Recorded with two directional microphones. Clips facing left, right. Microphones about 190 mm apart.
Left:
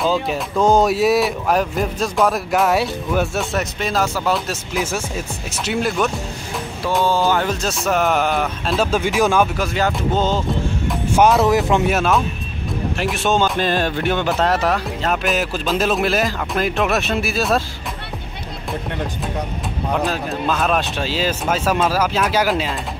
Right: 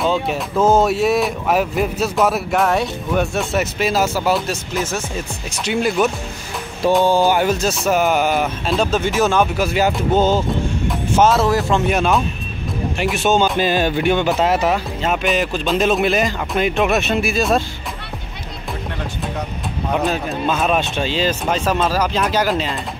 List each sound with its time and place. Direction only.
0.0 s speech: centre (ahead or behind)
4.7 s speech: 10° left (ahead or behind)
5.7 s speech: centre (ahead or behind)
7.1 s speech: 15° right (ahead or behind)
7.6 s speech: centre (ahead or behind)
8.9 s speech: 10° left (ahead or behind)
9.6 s speech: 5° right (ahead or behind)
11.1 s speech: 15° left (ahead or behind)
11.7 s speech: 5° left (ahead or behind)
19.9 s speech: centre (ahead or behind)